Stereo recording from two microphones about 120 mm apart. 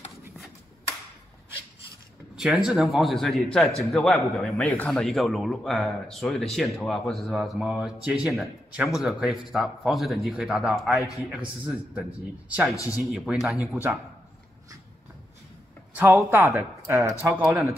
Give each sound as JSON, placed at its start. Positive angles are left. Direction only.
{"t": 2.3, "sound": "a man's voice", "side_deg": -5}
{"t": 12.7, "sound": "speech", "side_deg": 25}
{"t": 13.0, "sound": "speech", "side_deg": 0}
{"t": 13.6, "sound": "a man's voice", "side_deg": -20}
{"t": 15.9, "sound": "a sound", "side_deg": -15}
{"t": 16.3, "sound": "a man's voice", "side_deg": -20}